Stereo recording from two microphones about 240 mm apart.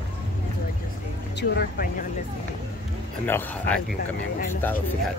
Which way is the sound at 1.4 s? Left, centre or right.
Left.